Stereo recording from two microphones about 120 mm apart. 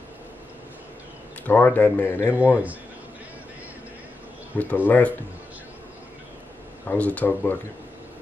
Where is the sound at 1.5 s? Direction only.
15° left (ahead or behind).